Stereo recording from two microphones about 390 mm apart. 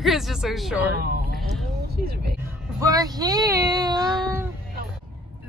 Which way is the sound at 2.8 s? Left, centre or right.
Centre.